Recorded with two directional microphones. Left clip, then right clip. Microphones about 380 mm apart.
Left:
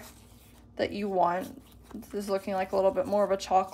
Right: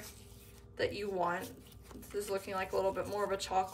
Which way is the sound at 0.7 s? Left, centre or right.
Centre.